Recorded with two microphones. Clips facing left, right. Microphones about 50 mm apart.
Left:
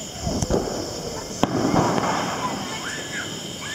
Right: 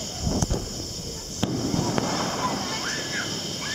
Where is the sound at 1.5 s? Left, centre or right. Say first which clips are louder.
Left 7 dB; left.